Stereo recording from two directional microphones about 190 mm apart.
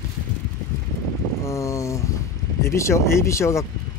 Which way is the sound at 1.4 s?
15° left (ahead or behind).